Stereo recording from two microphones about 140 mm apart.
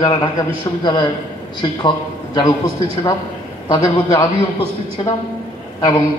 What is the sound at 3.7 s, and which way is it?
A man's voice, 40° left (ahead or behind).